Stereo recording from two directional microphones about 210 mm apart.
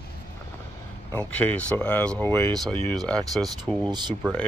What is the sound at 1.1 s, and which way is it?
Speech, 5° left (ahead or behind).